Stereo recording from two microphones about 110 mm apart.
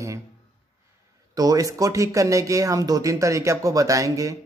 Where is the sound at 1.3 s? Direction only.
35° right (ahead or behind).